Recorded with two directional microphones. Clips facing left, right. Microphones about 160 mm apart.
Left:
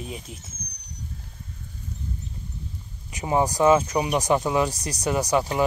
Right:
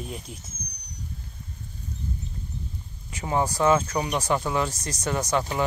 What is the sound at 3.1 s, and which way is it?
Speech, 20° left (ahead or behind).